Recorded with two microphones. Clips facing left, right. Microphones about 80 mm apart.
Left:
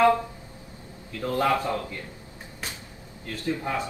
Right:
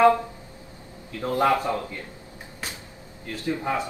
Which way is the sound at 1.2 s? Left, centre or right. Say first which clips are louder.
Right 2 dB; right.